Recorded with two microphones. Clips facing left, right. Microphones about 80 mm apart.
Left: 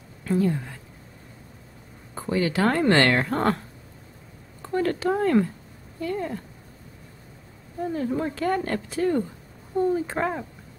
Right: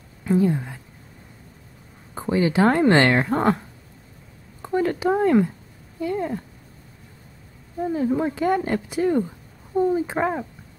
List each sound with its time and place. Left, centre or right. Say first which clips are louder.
0.2 s a woman's voice: right 3 dB; centre
2.1 s speech: right 4 dB; right
7.8 s speech: right 4 dB; centre